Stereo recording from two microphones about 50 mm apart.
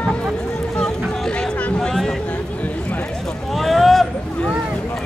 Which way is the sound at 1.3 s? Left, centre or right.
Left.